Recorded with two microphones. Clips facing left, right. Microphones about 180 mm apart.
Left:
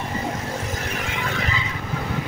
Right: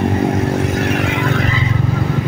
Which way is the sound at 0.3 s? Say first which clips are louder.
Right 12 dB; 65° right (ahead or behind).